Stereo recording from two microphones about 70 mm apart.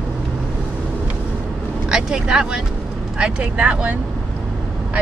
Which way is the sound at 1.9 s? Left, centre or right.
Centre.